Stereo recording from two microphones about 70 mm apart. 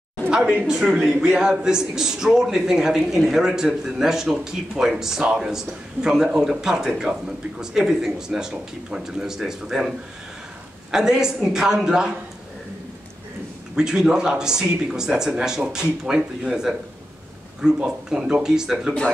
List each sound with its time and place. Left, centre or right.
0.3 s speech: centre
13.7 s speech: centre